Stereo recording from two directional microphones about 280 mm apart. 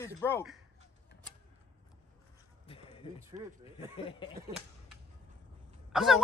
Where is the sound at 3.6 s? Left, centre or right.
Centre.